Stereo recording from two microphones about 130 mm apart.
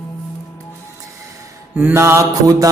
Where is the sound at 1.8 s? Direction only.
20° right (ahead or behind).